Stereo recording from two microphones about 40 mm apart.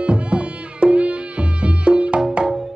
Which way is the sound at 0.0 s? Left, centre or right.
Right.